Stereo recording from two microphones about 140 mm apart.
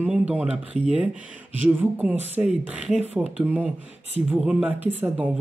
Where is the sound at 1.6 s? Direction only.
10° right (ahead or behind).